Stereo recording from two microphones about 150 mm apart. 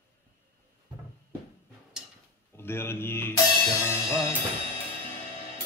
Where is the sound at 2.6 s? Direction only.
15° left (ahead or behind).